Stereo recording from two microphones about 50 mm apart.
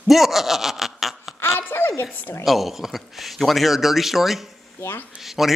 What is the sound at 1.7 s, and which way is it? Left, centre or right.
Speech, left.